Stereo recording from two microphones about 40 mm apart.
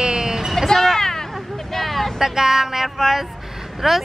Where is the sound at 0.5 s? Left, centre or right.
Centre.